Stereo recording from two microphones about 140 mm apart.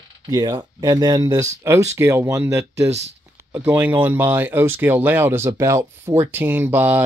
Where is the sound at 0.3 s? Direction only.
25° right (ahead or behind).